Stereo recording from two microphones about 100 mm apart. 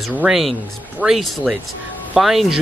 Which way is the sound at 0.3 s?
Centre (ahead or behind).